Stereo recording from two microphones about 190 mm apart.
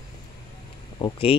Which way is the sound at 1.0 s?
30° left (ahead or behind).